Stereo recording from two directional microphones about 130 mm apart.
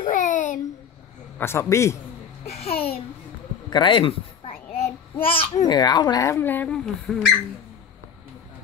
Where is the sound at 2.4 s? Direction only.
55° left (ahead or behind).